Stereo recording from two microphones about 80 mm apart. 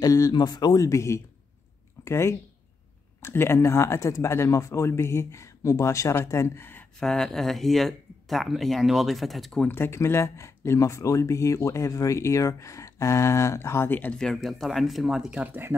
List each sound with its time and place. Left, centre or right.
0.0 s speech: left
0.3 s speech: left
0.8 s speech: left
7.0 s speech: centre
9.7 s speech: left
14.1 s speech: centre
15.4 s speech: right